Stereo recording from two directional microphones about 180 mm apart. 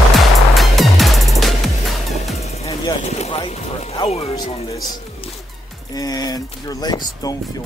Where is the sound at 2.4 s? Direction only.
35° left (ahead or behind).